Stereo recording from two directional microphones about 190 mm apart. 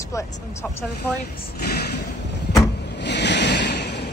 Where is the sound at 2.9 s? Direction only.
65° left (ahead or behind).